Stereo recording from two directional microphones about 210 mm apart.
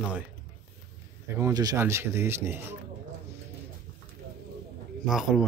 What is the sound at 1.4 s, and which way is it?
Speech, 15° right (ahead or behind).